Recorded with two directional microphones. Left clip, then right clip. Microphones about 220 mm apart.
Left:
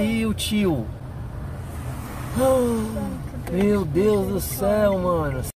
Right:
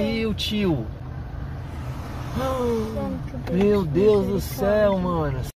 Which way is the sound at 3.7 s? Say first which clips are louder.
Right 2 dB; 15° left (ahead or behind).